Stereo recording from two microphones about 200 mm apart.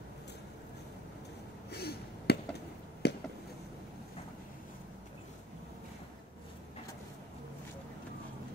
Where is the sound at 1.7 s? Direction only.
55° left (ahead or behind).